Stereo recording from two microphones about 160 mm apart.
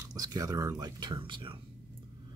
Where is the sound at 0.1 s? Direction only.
20° right (ahead or behind).